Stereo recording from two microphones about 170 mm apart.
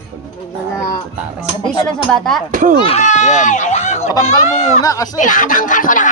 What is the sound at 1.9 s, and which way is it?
Speech, 5° left (ahead or behind).